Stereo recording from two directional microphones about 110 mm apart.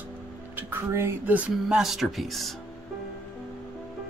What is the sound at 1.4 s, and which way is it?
Speech, 5° right (ahead or behind).